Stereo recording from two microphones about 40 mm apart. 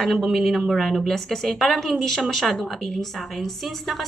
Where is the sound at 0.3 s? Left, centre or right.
Centre.